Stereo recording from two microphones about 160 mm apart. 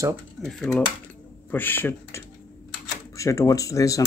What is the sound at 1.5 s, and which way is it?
Speech, 15° left (ahead or behind).